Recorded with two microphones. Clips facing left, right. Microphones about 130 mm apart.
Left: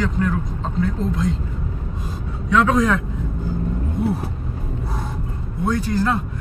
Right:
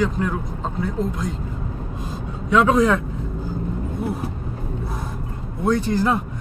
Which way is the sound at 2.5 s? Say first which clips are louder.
Right 1 dB; 15° right (ahead or behind).